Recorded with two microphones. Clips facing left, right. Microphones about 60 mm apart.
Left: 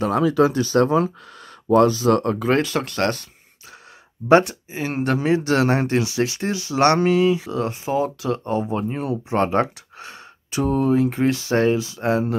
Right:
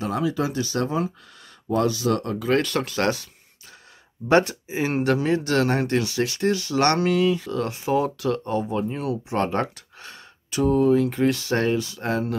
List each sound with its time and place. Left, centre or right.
0.0 s speech: left
1.9 s speech: left
2.6 s speech: centre
4.6 s speech: centre
4.9 s speech: centre
5.2 s speech: centre
8.5 s speech: left
9.5 s a sound: centre
10.6 s speech: left
11.0 s speech: left
11.2 s speech: centre